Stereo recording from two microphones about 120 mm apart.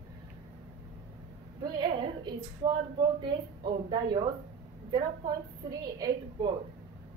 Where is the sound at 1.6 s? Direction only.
40° right (ahead or behind).